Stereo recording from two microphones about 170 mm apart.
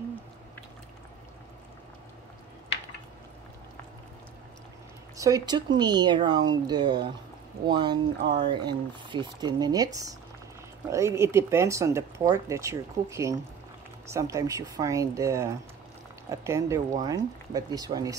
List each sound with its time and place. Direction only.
5.1 s speech: 20° right (ahead or behind)
10.9 s speech: 15° right (ahead or behind)